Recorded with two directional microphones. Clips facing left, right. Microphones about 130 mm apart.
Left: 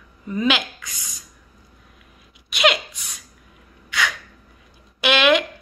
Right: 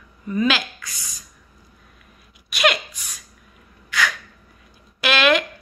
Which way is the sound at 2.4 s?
20° left (ahead or behind).